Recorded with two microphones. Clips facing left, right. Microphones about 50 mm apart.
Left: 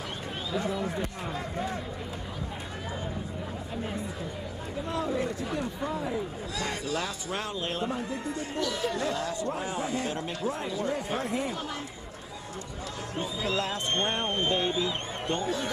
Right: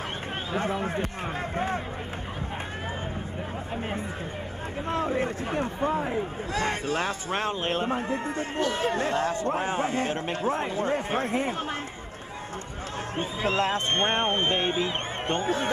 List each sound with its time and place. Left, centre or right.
0.5 s a man's voice: right
4.8 s a man's voice: right
13.2 s a man's voice: right